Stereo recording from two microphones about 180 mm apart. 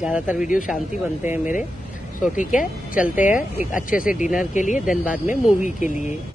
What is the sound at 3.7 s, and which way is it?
Speech, 50° left (ahead or behind).